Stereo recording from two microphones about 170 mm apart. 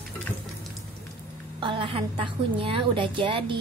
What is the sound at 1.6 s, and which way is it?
A woman's voice, 30° right (ahead or behind).